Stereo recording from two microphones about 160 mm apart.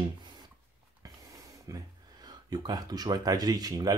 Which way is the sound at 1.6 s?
25° right (ahead or behind).